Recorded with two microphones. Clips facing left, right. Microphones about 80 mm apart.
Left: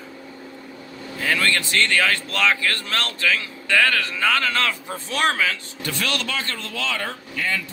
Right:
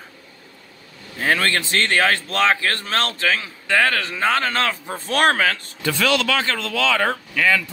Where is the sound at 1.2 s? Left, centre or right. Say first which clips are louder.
Right 2 dB; right.